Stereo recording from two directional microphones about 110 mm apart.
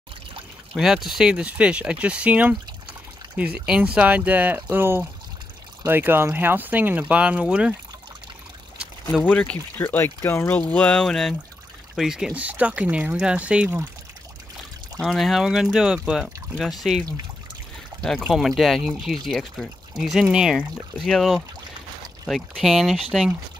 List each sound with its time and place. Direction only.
0.7 s speech: 5° right (ahead or behind)
9.3 s speech: 10° left (ahead or behind); by 13.8 s 15° right (ahead or behind)
15.0 s speech: centre (ahead or behind)
18.0 s speech: 5° left (ahead or behind)